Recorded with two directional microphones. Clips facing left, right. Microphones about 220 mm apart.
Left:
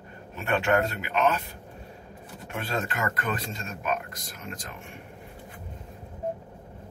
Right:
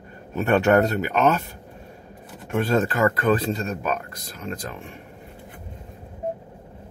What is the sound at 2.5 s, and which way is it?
Speech, 40° right (ahead or behind).